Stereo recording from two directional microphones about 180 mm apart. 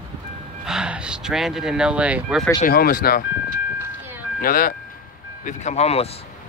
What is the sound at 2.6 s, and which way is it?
Speech, 55° left (ahead or behind).